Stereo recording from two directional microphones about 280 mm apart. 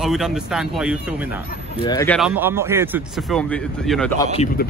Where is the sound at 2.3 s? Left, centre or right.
Centre.